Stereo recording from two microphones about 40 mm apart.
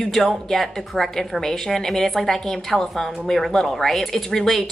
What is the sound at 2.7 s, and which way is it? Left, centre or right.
Speech, centre.